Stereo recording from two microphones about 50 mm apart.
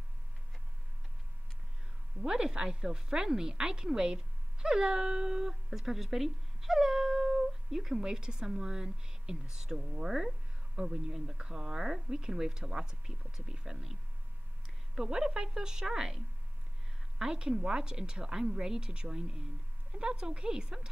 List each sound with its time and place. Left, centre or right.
2.2 s a woman's voice: centre
15.0 s speech: centre
17.2 s speech: centre